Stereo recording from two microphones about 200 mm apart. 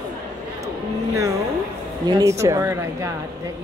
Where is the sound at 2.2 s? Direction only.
15° right (ahead or behind).